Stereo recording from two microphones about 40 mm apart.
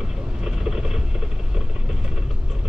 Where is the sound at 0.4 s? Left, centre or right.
Centre.